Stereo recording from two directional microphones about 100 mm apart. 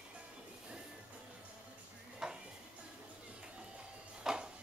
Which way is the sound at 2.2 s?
5° right (ahead or behind).